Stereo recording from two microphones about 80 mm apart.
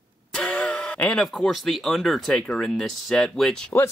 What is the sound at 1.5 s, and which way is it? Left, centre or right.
Speech, centre.